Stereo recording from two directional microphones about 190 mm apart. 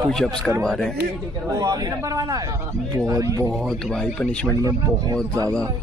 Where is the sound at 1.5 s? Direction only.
20° right (ahead or behind).